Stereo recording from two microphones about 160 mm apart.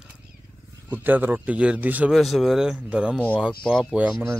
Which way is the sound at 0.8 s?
10° right (ahead or behind).